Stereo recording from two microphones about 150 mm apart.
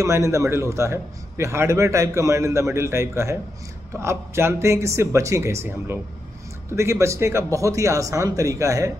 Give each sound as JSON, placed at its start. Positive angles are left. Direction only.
{"t": 0.0, "sound": "a man's voice", "side_deg": -20}